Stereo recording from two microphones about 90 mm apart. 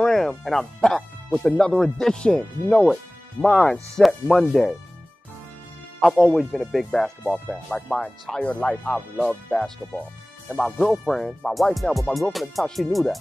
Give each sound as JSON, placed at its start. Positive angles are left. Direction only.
{"t": 0.0, "sound": "speech", "side_deg": 5}
{"t": 3.9, "sound": "speech", "side_deg": 0}
{"t": 5.9, "sound": "speech", "side_deg": 10}
{"t": 10.5, "sound": "speech", "side_deg": 5}